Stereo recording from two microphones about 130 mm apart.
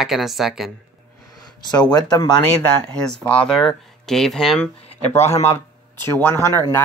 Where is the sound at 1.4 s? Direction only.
35° left (ahead or behind).